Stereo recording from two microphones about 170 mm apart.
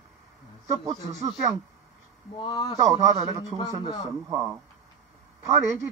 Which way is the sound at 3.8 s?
25° left (ahead or behind).